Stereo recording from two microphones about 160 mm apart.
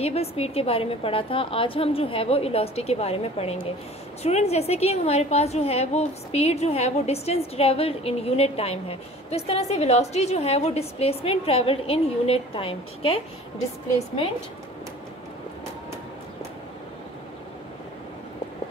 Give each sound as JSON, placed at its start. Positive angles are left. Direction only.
{"t": 0.0, "sound": "a woman's voice", "side_deg": 40}